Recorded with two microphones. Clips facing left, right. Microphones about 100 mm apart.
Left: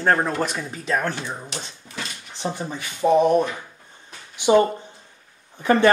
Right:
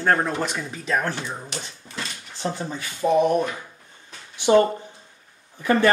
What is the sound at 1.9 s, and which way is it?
Dog, 5° left (ahead or behind).